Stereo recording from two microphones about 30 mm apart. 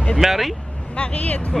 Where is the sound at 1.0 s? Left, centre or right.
Left.